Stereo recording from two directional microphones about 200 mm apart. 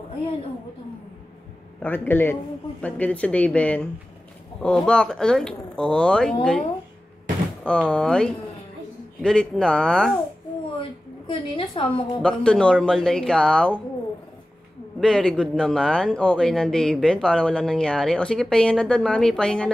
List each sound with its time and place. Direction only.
1.8 s speech: 10° left (ahead or behind)
10.8 s a sound: 25° left (ahead or behind)
12.2 s speech: 5° left (ahead or behind)
15.0 s speech: 5° left (ahead or behind)